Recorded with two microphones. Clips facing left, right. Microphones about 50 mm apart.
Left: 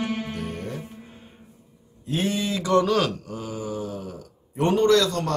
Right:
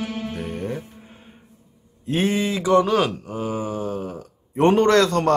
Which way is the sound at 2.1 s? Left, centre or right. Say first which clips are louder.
Right 4 dB; right.